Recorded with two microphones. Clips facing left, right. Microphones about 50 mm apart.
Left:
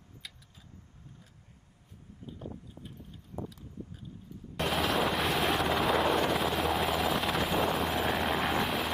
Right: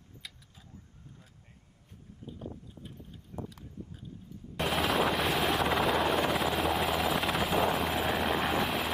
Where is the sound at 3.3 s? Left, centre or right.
Right.